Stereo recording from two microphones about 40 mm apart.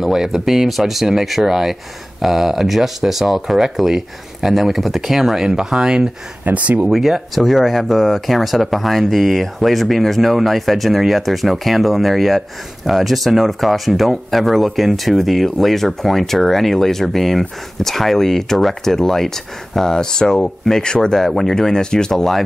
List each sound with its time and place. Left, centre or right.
0.0 s speech: centre
6.4 s speech: right
6.9 s speech: centre; by 21.2 s left
21.2 s speech: centre